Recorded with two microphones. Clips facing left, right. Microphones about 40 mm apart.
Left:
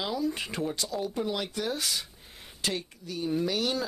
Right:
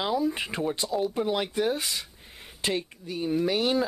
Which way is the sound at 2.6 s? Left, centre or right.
Right.